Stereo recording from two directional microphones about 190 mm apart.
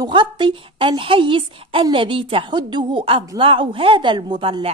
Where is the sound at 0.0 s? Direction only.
25° right (ahead or behind).